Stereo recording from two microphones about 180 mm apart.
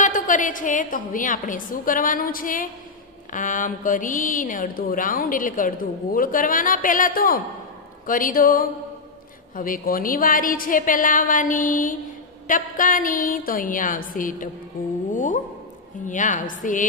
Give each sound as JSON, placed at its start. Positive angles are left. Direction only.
{"t": 0.0, "sound": "a woman's voice", "side_deg": 45}
{"t": 15.1, "sound": "a sound", "side_deg": 45}
{"t": 16.1, "sound": "a woman's voice", "side_deg": 45}